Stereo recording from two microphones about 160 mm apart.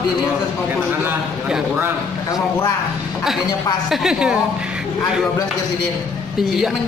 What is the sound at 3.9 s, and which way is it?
Speech, 5° right (ahead or behind).